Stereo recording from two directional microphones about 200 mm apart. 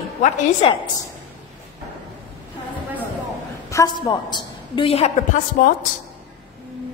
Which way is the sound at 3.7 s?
20° left (ahead or behind).